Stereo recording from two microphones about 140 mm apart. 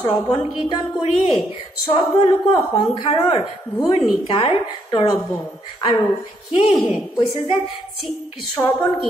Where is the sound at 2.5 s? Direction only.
30° left (ahead or behind).